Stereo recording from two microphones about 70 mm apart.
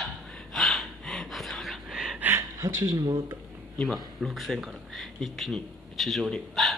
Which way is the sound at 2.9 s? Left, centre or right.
Right.